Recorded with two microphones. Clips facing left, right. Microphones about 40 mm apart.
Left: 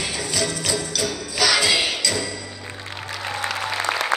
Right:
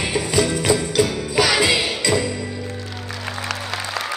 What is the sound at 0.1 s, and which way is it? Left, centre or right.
Music, right.